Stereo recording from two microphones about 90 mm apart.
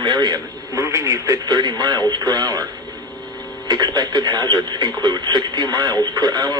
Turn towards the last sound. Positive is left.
turn(degrees=-50)  # may be behind; listen again after turning